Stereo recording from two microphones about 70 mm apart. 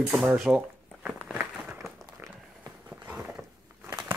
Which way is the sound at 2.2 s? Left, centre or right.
Right.